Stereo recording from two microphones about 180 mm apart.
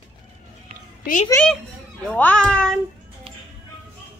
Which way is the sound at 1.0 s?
45° left (ahead or behind).